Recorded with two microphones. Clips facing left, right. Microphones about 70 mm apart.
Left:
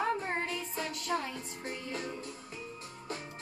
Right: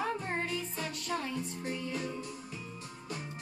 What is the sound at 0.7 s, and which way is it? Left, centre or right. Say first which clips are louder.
Music: left 2 dB; centre.